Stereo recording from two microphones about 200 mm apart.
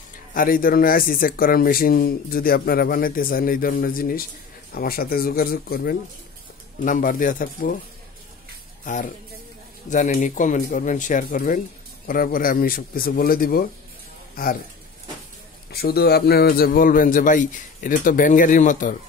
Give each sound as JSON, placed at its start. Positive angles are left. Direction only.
{"t": 0.3, "sound": "speech", "side_deg": 45}
{"t": 8.8, "sound": "a man's voice", "side_deg": 40}
{"t": 15.7, "sound": "speech", "side_deg": 50}